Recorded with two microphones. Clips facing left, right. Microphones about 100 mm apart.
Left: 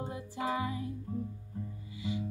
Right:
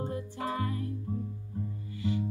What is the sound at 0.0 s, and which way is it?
Music, 10° left (ahead or behind).